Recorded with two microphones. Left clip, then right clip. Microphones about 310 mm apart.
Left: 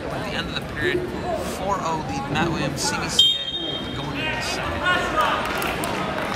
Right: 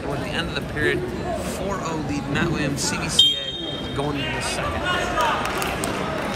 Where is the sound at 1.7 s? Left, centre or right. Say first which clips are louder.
Left 5 dB; centre.